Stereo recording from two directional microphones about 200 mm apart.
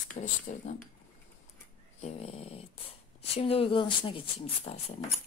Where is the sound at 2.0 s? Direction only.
30° left (ahead or behind).